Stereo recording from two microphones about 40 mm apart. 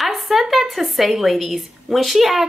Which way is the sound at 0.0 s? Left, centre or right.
Centre.